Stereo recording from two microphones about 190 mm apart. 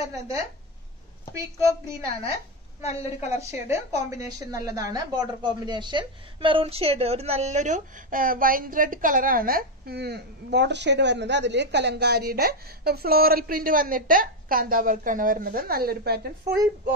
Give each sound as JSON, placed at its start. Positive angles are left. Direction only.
{"t": 1.3, "sound": "a woman's voice", "side_deg": -15}
{"t": 2.8, "sound": "a woman's voice", "side_deg": 35}
{"t": 3.4, "sound": "a woman's voice", "side_deg": -15}